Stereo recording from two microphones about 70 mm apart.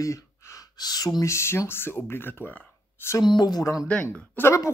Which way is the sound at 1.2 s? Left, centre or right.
Left.